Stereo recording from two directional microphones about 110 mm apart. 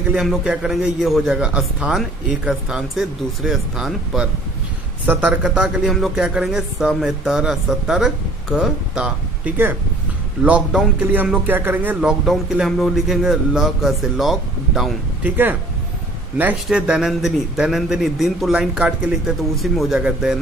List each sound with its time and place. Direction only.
0.1 s a man's voice: 5° right (ahead or behind)
15.2 s speech: 20° right (ahead or behind)
16.6 s a man's voice: 5° right (ahead or behind)